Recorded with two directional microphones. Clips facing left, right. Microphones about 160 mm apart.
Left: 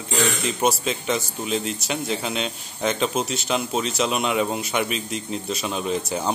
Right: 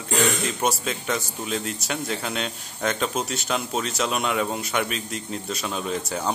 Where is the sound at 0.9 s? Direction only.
20° left (ahead or behind).